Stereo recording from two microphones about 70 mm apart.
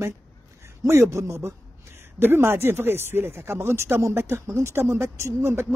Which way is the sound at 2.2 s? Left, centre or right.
Right.